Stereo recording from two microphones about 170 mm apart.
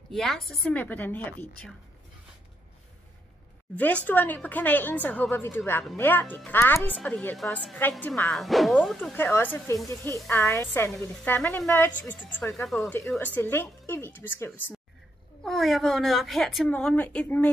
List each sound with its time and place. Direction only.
0.1 s speech: centre (ahead or behind)
3.7 s speech: 10° left (ahead or behind)
15.4 s speech: centre (ahead or behind)